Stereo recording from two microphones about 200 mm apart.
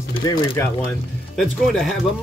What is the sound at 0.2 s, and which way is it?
Speech, 20° left (ahead or behind).